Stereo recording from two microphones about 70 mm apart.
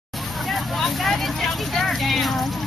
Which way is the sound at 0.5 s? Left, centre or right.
Centre.